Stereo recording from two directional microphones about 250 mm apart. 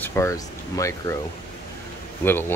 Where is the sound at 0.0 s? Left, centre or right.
Centre.